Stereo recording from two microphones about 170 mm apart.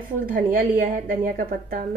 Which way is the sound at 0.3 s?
55° right (ahead or behind).